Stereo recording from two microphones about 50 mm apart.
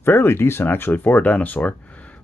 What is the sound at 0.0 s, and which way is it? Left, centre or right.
Speech, left.